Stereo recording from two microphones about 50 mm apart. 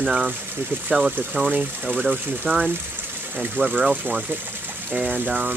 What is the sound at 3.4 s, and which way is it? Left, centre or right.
Speech, right.